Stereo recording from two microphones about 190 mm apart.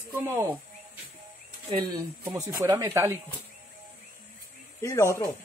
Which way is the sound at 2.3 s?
20° right (ahead or behind).